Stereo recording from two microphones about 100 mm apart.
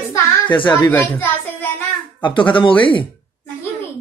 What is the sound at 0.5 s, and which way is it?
Mantra, 50° left (ahead or behind).